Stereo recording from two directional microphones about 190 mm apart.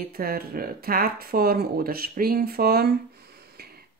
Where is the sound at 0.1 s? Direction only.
50° right (ahead or behind).